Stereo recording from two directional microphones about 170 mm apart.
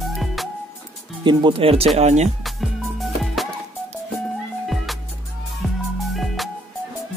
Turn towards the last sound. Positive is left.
turn(degrees=0)  # may be behind; listen again after turning